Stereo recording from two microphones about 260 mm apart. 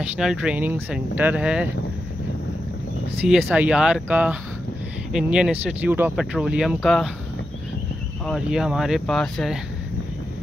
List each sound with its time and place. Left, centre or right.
0.0 s speech: centre
3.3 s speech: centre
8.3 s speech: centre